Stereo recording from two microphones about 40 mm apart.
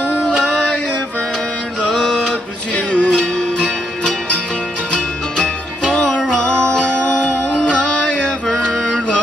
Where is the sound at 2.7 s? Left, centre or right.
Left.